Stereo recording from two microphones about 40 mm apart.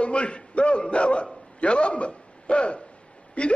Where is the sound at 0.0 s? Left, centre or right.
Left.